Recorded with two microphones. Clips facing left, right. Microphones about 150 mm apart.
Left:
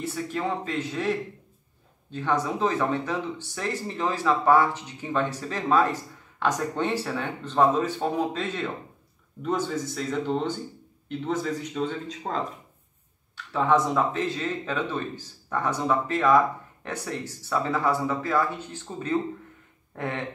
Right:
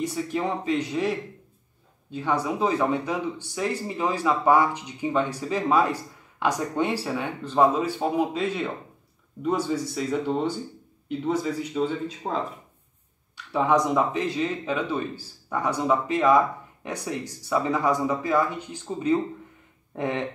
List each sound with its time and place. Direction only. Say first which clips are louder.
0.0 s speech: right 2 dB; 15° right (ahead or behind)
13.5 s speech: right 1 dB; 15° right (ahead or behind)